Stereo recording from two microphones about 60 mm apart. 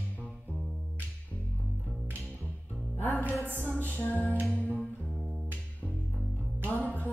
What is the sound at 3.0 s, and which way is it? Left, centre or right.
Music, left.